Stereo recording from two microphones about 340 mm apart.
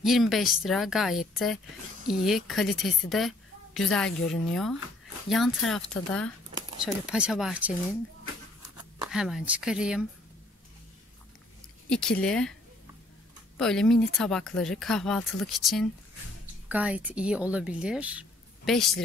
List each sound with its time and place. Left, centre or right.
0.0 s a woman's voice: centre
9.0 s speech: centre
11.9 s speech: centre
13.6 s speech: centre